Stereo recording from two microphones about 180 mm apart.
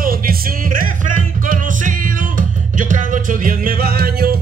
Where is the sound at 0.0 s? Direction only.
55° right (ahead or behind).